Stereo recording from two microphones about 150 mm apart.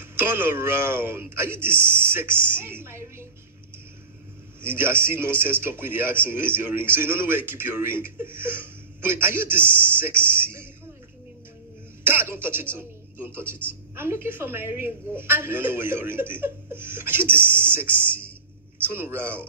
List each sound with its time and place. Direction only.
0.0 s speech: 15° right (ahead or behind)
4.6 s speech: 15° right (ahead or behind)
12.0 s speech: 15° right (ahead or behind)